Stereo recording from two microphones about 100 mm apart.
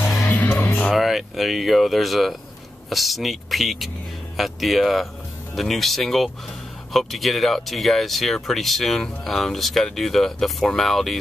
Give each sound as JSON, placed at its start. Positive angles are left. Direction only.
{"t": 0.0, "sound": "music", "side_deg": 25}
{"t": 0.8, "sound": "speech", "side_deg": 0}